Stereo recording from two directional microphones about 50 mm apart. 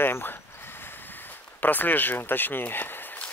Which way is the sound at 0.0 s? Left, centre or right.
Left.